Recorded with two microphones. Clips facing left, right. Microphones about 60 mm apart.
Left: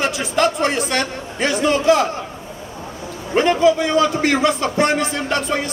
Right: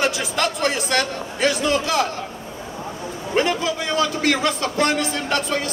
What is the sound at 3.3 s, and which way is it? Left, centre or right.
A man's voice, left.